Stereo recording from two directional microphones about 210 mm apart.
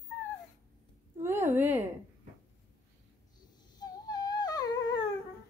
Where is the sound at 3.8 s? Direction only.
20° left (ahead or behind).